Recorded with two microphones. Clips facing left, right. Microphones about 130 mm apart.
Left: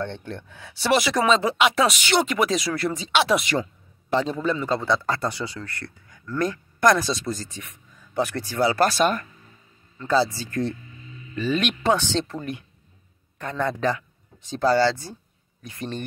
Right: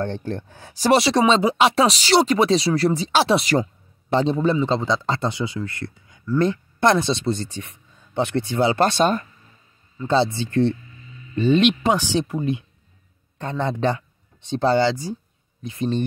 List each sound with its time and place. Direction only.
0.0 s speech: 40° right (ahead or behind)
4.6 s speech: 20° right (ahead or behind)